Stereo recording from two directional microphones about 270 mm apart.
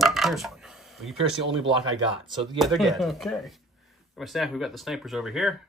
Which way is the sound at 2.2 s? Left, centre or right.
Centre.